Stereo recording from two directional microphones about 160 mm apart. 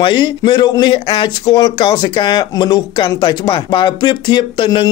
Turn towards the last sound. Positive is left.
turn(degrees=30)  # may be behind; listen again after turning